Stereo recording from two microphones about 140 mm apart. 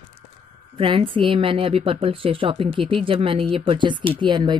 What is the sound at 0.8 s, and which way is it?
Speech, 40° right (ahead or behind).